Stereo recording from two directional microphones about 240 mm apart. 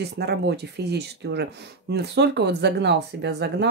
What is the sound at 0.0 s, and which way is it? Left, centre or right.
Speech, right.